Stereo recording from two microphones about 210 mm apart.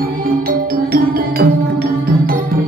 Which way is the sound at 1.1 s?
45° right (ahead or behind).